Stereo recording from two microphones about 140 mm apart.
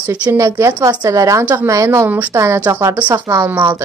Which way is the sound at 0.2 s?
15° right (ahead or behind).